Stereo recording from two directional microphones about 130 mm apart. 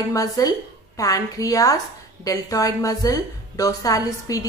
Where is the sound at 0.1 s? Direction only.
30° left (ahead or behind).